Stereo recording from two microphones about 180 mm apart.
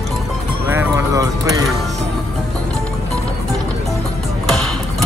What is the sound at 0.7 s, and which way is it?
Music, 15° right (ahead or behind).